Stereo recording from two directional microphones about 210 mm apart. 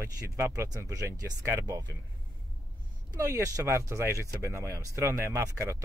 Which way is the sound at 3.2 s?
15° right (ahead or behind).